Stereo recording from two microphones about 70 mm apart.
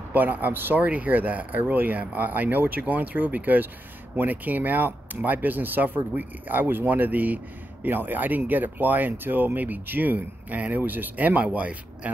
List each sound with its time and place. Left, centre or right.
0.1 s speech: right